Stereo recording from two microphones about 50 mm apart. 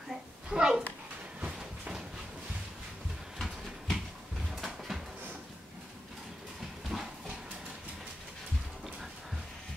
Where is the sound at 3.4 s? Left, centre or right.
Centre.